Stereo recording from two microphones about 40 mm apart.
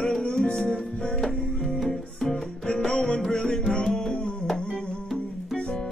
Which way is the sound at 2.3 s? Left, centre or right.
Left.